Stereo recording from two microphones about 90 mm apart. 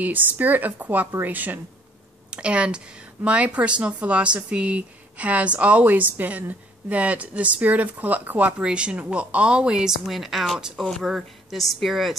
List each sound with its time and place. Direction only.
0.0 s a woman's voice: 20° right (ahead or behind); by 12.2 s centre (ahead or behind)